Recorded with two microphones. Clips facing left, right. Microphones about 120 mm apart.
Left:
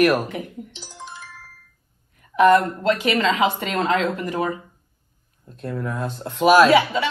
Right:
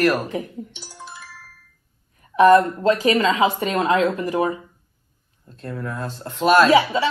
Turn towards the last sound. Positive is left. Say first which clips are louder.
# right 1 dB
turn(degrees=-30)  # may be behind; listen again after turning